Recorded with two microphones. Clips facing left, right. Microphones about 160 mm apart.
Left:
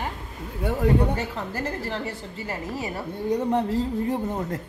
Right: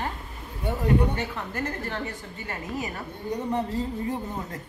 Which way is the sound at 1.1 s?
30° left (ahead or behind).